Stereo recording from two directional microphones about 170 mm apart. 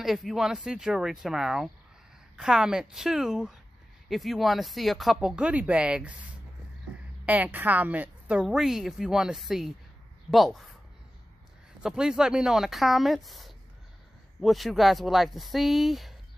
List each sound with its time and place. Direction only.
0.0 s a woman's voice: centre (ahead or behind)
7.2 s a woman's voice: 10° right (ahead or behind)
11.8 s a woman's voice: 5° right (ahead or behind)